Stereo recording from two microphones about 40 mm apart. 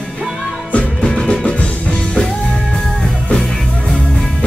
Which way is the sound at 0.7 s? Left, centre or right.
Left.